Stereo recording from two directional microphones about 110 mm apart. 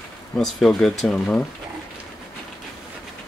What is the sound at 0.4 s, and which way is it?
Speech, 5° left (ahead or behind).